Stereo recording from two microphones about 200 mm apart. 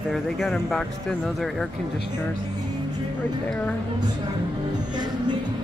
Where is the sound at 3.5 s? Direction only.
5° left (ahead or behind).